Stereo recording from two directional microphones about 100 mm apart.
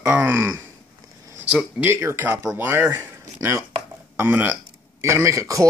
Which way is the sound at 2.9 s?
30° right (ahead or behind).